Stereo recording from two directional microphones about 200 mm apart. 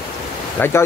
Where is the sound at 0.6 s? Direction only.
10° left (ahead or behind).